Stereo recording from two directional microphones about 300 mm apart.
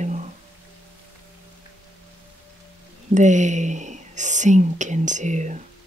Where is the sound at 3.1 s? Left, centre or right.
Right.